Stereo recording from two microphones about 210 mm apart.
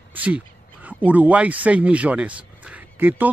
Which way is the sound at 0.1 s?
5° right (ahead or behind).